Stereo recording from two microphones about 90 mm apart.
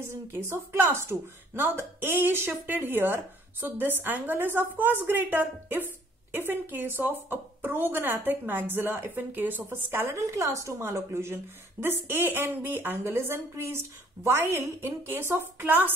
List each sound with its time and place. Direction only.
0.0 s a woman's voice: 30° right (ahead or behind)